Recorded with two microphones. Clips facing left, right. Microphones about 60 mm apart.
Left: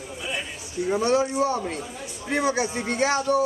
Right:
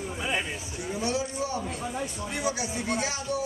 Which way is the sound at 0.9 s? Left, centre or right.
Left.